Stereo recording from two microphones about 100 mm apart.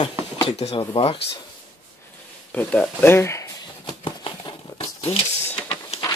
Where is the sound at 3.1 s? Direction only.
25° left (ahead or behind).